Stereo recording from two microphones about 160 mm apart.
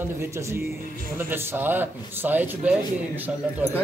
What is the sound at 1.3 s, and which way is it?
A man's voice, 10° right (ahead or behind).